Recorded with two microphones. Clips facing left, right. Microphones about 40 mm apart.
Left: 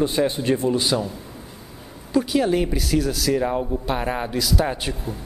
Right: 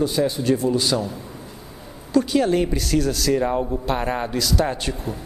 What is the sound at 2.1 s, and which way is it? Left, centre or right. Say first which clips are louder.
Speech: right 1 dB; centre.